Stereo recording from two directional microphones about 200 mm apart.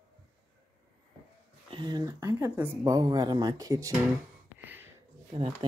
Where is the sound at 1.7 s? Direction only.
20° right (ahead or behind).